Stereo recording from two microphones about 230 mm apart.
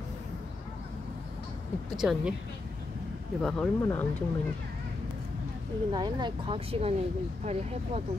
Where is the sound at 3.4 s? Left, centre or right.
Centre.